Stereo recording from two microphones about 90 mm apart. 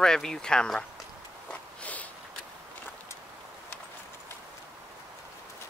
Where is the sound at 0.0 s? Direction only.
5° left (ahead or behind).